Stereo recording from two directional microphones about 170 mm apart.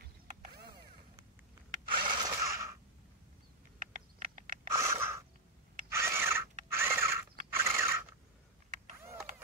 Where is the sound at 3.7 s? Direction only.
55° right (ahead or behind).